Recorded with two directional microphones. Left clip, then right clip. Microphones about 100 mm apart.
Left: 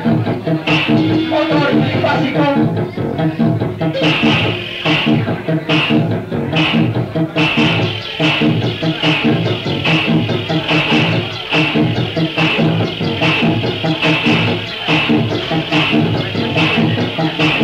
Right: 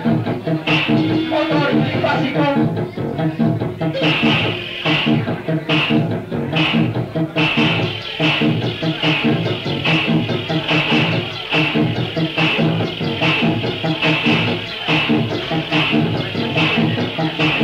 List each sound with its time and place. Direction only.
0.0 s music: 40° right (ahead or behind)
3.8 s music: 45° right (ahead or behind)